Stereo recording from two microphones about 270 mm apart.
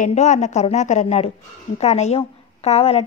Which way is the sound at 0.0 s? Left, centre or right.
Left.